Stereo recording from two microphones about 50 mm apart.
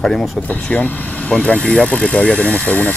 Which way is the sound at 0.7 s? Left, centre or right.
Left.